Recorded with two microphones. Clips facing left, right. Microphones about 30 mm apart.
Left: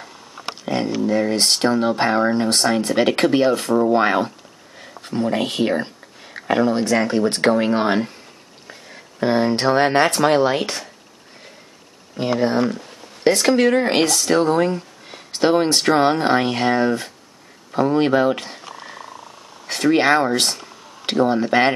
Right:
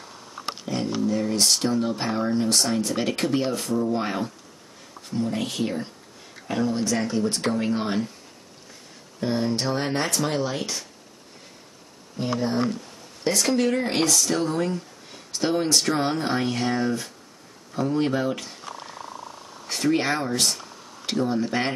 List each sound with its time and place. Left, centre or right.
0.0 s a sound: left
1.0 s speech: left
4.7 s a sound: left
6.4 s speech: left
12.2 s speech: left
19.7 s speech: left